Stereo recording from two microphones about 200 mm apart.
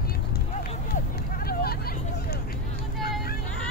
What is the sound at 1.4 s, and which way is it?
Vehicle, 50° left (ahead or behind).